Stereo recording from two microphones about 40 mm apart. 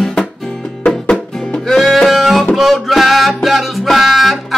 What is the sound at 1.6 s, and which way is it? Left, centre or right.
Music, centre.